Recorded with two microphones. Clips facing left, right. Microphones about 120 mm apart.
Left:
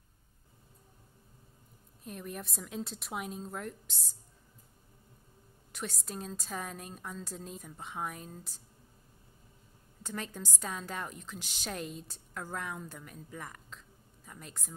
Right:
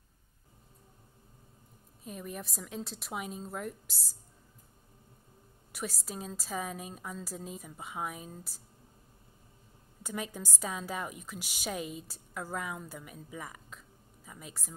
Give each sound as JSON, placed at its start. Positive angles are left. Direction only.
{"t": 2.0, "sound": "a woman's voice", "side_deg": 0}
{"t": 5.7, "sound": "a woman's voice", "side_deg": -5}
{"t": 10.0, "sound": "a woman's voice", "side_deg": -10}